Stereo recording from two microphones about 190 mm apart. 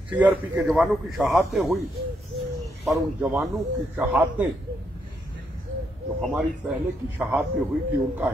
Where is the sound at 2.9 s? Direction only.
10° right (ahead or behind).